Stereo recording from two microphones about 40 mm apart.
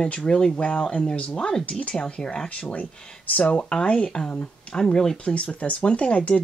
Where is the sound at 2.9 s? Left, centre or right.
Left.